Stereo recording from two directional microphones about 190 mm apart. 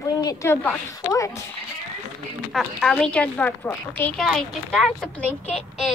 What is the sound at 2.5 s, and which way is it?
A woman's voice, 5° left (ahead or behind).